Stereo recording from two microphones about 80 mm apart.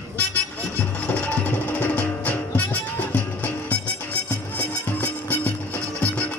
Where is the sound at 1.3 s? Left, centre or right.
Centre.